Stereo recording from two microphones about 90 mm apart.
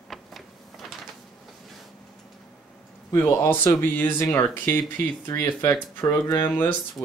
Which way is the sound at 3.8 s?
25° left (ahead or behind).